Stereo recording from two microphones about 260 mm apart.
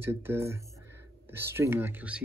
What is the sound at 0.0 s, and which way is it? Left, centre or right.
Speech, centre.